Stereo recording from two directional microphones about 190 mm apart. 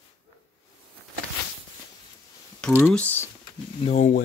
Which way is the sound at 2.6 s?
5° left (ahead or behind).